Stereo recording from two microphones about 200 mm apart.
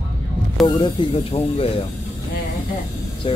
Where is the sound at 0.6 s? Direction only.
25° left (ahead or behind).